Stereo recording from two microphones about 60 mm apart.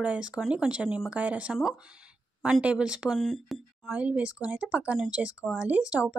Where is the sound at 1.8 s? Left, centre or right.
Centre.